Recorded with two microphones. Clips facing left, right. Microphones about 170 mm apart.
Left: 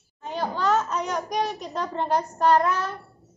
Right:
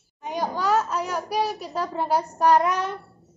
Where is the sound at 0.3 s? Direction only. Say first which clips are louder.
Even; 10° right (ahead or behind).